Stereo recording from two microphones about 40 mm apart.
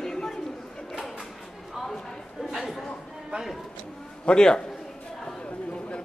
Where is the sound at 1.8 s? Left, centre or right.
Centre.